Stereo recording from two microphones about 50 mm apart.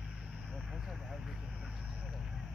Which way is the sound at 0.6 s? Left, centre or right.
Centre.